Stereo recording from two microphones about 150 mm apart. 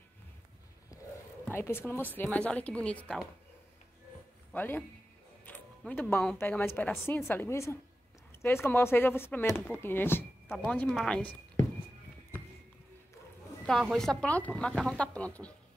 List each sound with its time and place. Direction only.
1.5 s speech: 15° left (ahead or behind)
4.6 s speech: 10° left (ahead or behind)
13.7 s speech: centre (ahead or behind)